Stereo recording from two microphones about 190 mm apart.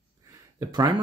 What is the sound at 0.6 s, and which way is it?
Speech, 20° right (ahead or behind).